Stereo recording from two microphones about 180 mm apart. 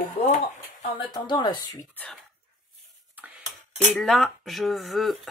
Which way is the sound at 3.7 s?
Centre (ahead or behind).